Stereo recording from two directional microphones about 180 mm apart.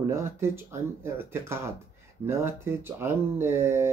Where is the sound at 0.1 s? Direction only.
15° right (ahead or behind).